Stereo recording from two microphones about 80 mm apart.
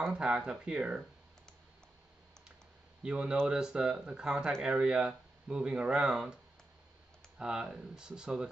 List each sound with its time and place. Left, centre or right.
0.0 s speech: centre
3.0 s speech: centre